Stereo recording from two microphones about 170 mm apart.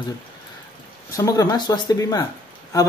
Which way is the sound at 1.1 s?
20° left (ahead or behind).